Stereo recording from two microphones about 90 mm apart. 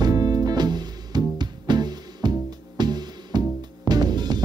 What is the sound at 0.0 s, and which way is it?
Music, 45° right (ahead or behind).